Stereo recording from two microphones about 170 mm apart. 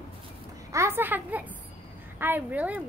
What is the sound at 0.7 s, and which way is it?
A woman's voice, 15° right (ahead or behind).